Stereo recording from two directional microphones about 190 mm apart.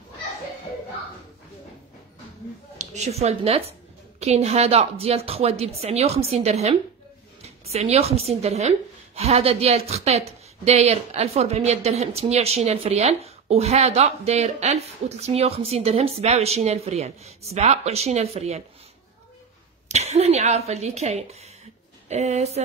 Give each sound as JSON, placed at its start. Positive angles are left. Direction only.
{"t": 2.8, "sound": "speech", "side_deg": -35}
{"t": 19.9, "sound": "speech", "side_deg": -35}